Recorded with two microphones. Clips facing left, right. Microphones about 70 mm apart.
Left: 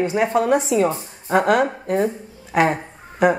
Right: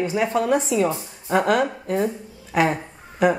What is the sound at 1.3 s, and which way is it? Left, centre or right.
A woman's voice, centre.